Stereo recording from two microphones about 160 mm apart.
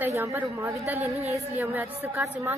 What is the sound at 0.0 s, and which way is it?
Speech, 15° right (ahead or behind).